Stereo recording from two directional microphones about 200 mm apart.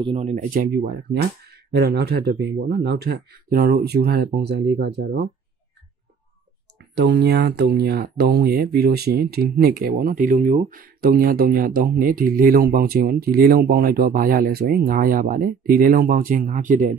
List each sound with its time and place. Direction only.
0.0 s speech: 30° right (ahead or behind); by 5.3 s 55° right (ahead or behind)
7.0 s speech: 55° right (ahead or behind); by 16.8 s 40° right (ahead or behind)